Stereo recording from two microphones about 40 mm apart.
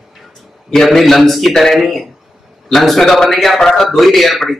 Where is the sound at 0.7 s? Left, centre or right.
Centre.